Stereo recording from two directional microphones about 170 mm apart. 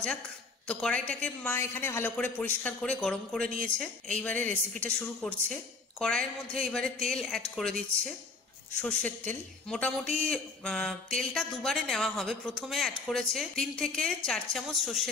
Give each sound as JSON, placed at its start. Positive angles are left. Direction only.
{"t": 0.7, "sound": "a man's voice", "side_deg": 5}
{"t": 8.8, "sound": "a man's voice", "side_deg": 10}